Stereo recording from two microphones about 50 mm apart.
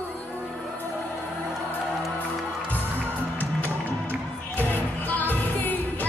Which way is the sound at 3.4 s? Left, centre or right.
Left.